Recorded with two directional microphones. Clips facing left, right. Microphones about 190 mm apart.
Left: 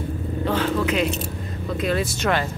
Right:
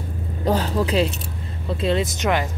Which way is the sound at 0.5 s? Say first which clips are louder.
Right 2 dB; 35° right (ahead or behind).